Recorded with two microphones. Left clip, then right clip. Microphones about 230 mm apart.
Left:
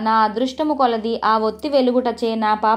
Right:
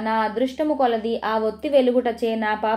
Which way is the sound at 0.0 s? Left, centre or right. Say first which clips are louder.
Left 5 dB; centre.